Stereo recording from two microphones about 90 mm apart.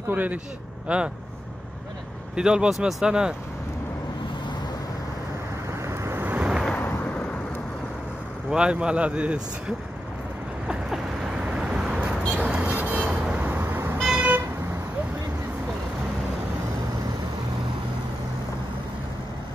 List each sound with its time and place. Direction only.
0.1 s speech: 20° right (ahead or behind)
2.3 s speech: 10° right (ahead or behind)
5.9 s vehicle: 25° right (ahead or behind)
8.5 s speech: 10° right (ahead or behind)
10.7 s vehicle: 10° right (ahead or behind)
13.9 s vehicle: centre (ahead or behind)